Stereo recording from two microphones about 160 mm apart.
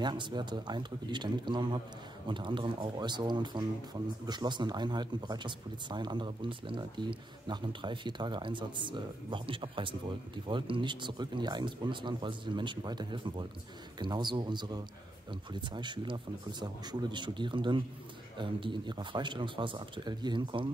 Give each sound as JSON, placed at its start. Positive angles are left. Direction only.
{"t": 0.0, "sound": "speech", "side_deg": -30}